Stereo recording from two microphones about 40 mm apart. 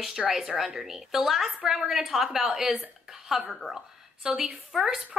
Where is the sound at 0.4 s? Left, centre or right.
Centre.